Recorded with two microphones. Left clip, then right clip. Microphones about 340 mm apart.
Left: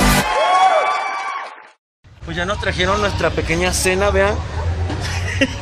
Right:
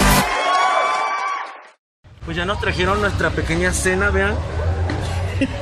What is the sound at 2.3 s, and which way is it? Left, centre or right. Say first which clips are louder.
Speech: left 1 dB; centre.